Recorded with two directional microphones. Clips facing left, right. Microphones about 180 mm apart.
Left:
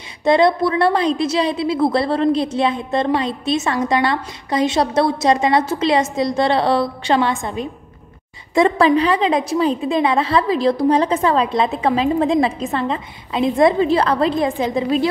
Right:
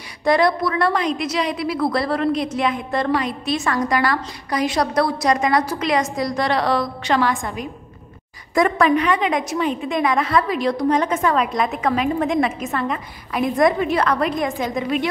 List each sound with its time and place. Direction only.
0.2 s a woman's voice: 25° left (ahead or behind)